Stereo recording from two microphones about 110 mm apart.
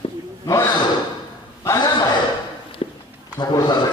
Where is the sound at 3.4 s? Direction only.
40° left (ahead or behind).